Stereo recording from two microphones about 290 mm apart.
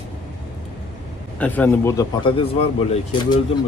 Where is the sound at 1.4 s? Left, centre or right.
Centre.